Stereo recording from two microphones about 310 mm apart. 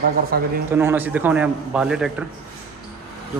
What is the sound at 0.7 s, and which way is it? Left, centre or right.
A man's voice, centre.